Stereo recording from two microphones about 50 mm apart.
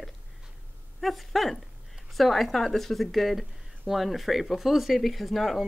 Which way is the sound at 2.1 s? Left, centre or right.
Centre.